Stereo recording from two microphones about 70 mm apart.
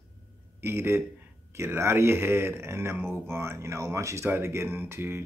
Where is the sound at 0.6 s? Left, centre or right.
Right.